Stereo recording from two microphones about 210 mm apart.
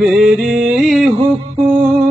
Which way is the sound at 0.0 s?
Centre (ahead or behind).